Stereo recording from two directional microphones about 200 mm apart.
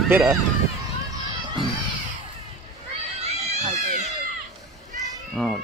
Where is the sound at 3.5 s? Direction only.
35° right (ahead or behind).